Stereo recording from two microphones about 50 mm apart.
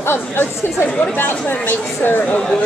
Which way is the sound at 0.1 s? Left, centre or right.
Left.